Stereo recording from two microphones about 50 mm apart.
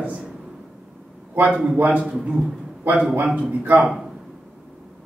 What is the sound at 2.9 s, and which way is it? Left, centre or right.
Speech, right.